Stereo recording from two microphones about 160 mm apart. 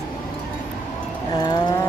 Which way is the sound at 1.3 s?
25° left (ahead or behind).